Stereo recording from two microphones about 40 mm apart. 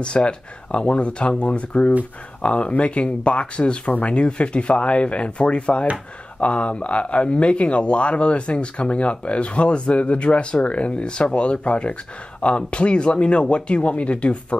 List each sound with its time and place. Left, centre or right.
0.0 s speech: left